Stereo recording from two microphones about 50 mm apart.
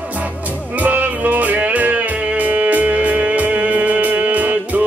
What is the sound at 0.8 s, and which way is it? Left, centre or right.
Music, right.